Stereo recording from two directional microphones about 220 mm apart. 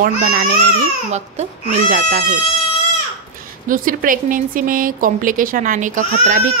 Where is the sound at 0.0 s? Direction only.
40° right (ahead or behind).